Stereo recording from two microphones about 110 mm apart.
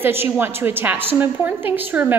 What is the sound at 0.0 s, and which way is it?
A woman's voice, 20° right (ahead or behind).